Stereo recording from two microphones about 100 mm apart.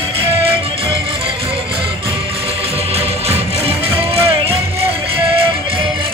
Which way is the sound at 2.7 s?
90° right.